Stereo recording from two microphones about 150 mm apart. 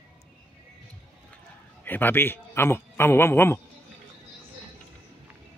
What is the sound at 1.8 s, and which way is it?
A man's voice, 15° left (ahead or behind).